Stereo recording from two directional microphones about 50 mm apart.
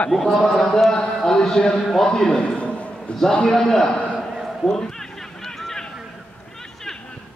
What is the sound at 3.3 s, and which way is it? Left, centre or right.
Speech, centre.